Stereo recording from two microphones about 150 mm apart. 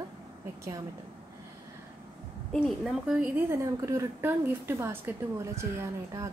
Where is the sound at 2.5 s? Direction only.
Centre (ahead or behind).